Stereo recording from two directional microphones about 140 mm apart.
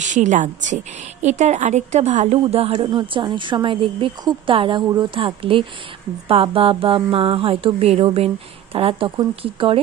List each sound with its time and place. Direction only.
0.0 s a woman's voice: 60° right (ahead or behind); by 9.8 s 40° right (ahead or behind)